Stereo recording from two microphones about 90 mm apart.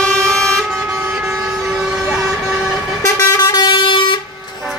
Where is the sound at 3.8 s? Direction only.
65° left (ahead or behind).